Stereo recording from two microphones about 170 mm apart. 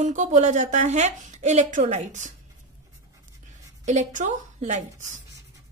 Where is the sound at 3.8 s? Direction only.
45° right (ahead or behind).